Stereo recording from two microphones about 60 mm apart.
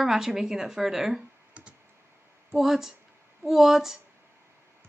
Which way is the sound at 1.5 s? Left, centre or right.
Right.